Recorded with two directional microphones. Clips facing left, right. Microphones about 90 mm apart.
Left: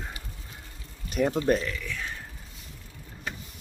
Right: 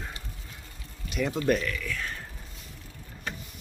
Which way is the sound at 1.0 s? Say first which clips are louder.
Left 4 dB; 40° left (ahead or behind).